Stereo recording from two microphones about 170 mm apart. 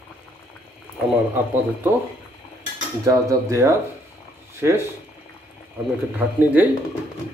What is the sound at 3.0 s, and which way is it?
Cutlery, 20° right (ahead or behind).